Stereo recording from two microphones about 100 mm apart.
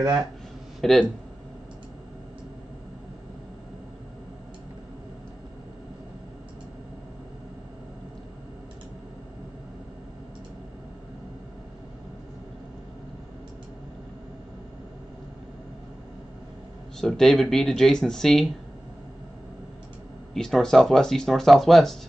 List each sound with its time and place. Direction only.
0.0 s speech: 40° right (ahead or behind)
0.7 s speech: centre (ahead or behind)
17.0 s speech: 5° left (ahead or behind)
20.3 s speech: 5° left (ahead or behind)